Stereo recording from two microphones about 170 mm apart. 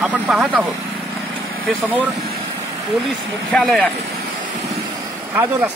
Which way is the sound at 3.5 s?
Centre (ahead or behind).